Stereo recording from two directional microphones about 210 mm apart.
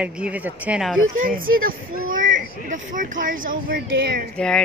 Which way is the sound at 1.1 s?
40° right (ahead or behind).